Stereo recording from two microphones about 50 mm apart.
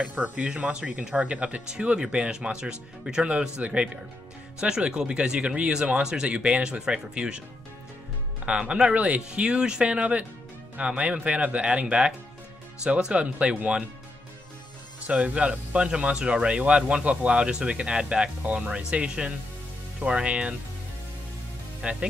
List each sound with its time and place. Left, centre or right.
0.0 s speech: right
8.5 s speech: centre
15.0 s speech: right
21.8 s speech: centre